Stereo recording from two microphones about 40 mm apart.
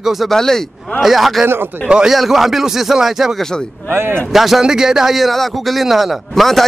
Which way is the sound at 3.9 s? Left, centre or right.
Right.